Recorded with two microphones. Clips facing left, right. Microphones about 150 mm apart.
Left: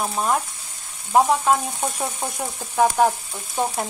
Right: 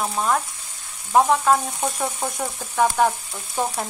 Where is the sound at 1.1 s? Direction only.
10° left (ahead or behind).